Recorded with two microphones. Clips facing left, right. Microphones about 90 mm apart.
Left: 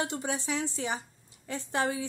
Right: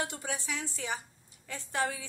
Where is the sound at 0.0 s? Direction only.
25° left (ahead or behind).